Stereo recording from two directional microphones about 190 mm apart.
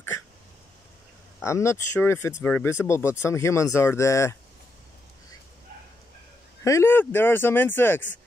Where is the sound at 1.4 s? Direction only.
15° left (ahead or behind).